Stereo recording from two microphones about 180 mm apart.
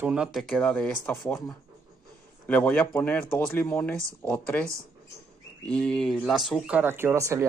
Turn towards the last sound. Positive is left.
turn(degrees=-15)  # may be behind; listen again after turning